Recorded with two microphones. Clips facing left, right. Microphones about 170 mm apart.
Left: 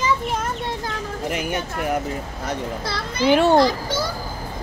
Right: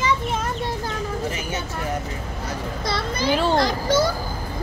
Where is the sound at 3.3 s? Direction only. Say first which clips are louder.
Left 5 dB; 65° left (ahead or behind).